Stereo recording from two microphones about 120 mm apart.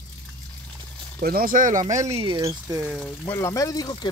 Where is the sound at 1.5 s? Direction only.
90° right.